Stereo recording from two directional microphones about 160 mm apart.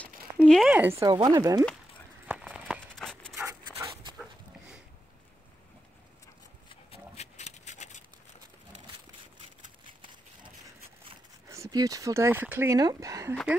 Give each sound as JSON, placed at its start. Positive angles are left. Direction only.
{"t": 0.5, "sound": "speech", "side_deg": 0}
{"t": 0.7, "sound": "speech", "side_deg": -15}
{"t": 1.1, "sound": "speech", "side_deg": -25}
{"t": 2.2, "sound": "a sound", "side_deg": -5}
{"t": 3.0, "sound": "dog", "side_deg": 5}
{"t": 3.3, "sound": "dog", "side_deg": -15}
{"t": 6.7, "sound": "a sound", "side_deg": 40}
{"t": 11.4, "sound": "speech", "side_deg": -20}